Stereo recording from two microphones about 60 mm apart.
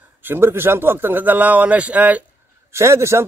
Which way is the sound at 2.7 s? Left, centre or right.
Right.